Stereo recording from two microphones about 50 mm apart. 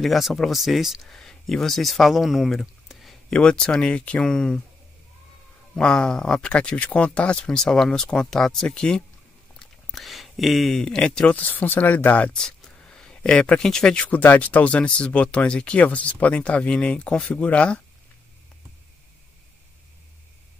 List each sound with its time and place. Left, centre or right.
0.0 s speech: centre
1.0 s speech: centre
3.3 s speech: centre
3.8 s speech: left
4.2 s speech: centre
5.8 s speech: centre
9.6 s a sound: centre
11.0 s speech: left
11.3 s speech: left
12.3 s a sound: centre
13.9 s speech: left